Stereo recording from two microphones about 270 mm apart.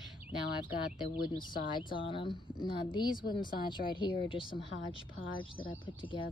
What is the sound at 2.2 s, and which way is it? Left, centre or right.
Speech, centre.